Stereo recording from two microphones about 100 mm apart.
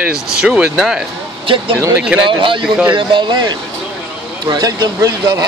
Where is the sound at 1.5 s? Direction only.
60° right (ahead or behind).